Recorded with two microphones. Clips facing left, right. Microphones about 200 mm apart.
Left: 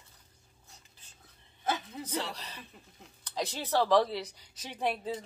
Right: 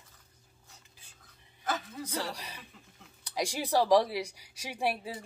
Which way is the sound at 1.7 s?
20° left (ahead or behind).